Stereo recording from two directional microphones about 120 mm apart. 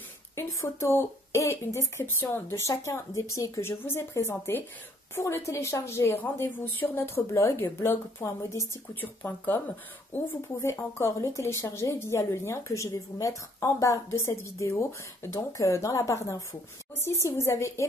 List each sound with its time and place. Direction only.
0.4 s speech: 25° left (ahead or behind)